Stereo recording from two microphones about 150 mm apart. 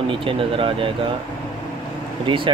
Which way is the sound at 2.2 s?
35° right (ahead or behind).